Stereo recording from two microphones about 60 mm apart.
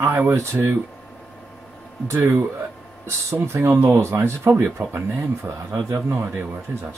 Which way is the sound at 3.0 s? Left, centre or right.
Right.